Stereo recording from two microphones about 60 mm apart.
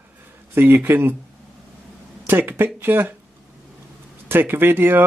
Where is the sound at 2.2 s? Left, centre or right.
Right.